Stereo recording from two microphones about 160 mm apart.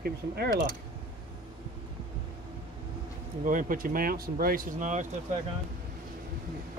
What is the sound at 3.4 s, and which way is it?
Speech, 60° right (ahead or behind).